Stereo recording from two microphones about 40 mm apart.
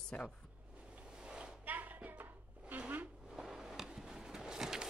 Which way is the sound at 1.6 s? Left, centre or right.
Right.